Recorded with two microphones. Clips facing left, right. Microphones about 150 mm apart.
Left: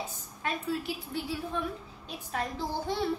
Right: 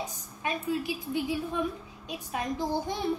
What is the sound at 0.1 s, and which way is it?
A woman's voice, 15° right (ahead or behind).